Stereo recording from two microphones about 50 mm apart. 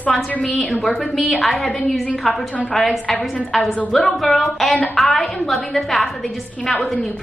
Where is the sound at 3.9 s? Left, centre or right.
Centre.